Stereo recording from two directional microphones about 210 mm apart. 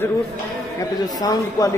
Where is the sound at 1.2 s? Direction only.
15° left (ahead or behind).